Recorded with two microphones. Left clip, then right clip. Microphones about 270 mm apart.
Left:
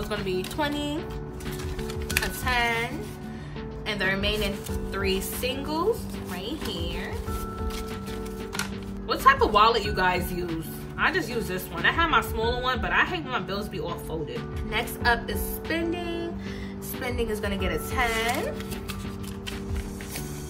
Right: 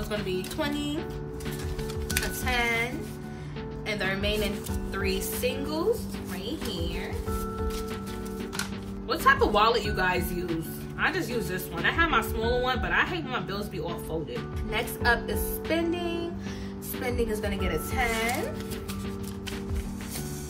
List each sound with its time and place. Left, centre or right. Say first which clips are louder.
0.1 s a woman's voice: left 1 dB; centre
2.1 s music: left 3 dB; centre
3.8 s speech: left 3 dB; centre
9.1 s a woman's voice: left 3 dB; centre